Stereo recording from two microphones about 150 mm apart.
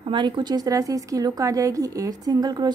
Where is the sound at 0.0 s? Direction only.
30° right (ahead or behind).